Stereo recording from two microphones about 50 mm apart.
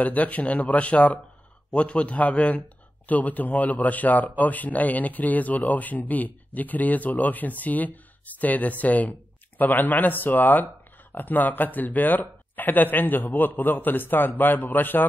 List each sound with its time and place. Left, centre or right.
0.0 s a man's voice: left